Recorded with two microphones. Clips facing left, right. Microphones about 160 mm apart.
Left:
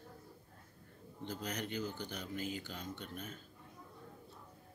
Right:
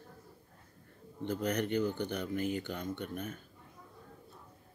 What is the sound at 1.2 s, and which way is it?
Speech, 60° right (ahead or behind).